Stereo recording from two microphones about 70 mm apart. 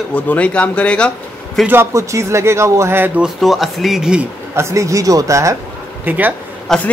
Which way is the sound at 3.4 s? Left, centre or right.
Centre.